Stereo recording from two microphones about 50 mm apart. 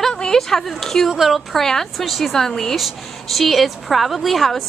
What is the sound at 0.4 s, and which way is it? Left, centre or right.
A woman's voice, centre.